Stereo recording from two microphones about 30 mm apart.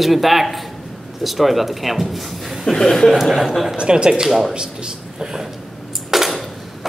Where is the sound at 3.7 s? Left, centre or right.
Right.